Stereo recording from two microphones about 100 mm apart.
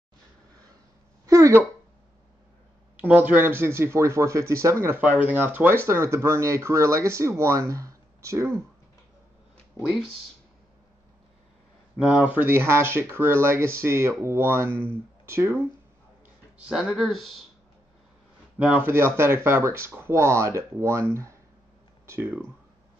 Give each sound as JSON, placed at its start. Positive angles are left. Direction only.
{"t": 1.2, "sound": "a sound", "side_deg": -30}
{"t": 3.0, "sound": "speech", "side_deg": -15}
{"t": 9.8, "sound": "speech", "side_deg": -10}
{"t": 12.0, "sound": "speech", "side_deg": -10}
{"t": 16.5, "sound": "speech", "side_deg": -5}
{"t": 18.9, "sound": "speech", "side_deg": -25}